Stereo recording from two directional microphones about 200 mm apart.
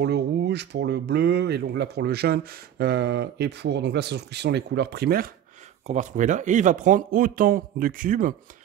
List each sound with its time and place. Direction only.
0.0 s speech: 55° right (ahead or behind)
5.9 s speech: 35° right (ahead or behind)